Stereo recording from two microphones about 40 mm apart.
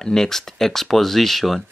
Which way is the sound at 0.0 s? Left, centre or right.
Centre.